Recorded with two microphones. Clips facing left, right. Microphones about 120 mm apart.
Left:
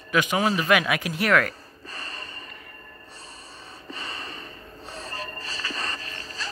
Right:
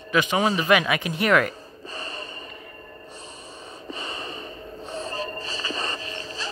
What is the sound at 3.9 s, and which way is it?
Snort, centre (ahead or behind).